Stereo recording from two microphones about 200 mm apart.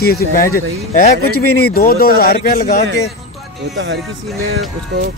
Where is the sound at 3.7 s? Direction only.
65° right (ahead or behind).